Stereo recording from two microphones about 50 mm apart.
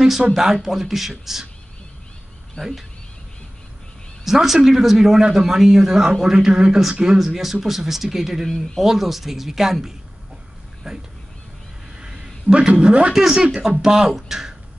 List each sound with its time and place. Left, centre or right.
0.3 s a man's voice: centre
4.2 s a man's voice: centre
12.0 s a sound: centre
13.1 s a man's voice: centre